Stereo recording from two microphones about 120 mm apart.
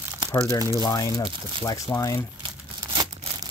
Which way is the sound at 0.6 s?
30° right (ahead or behind).